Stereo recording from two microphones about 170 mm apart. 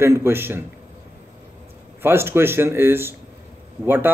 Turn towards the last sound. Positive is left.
turn(degrees=-10)  # may be behind; listen again after turning